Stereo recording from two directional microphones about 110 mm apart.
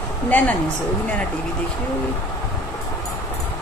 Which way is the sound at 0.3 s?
15° left (ahead or behind).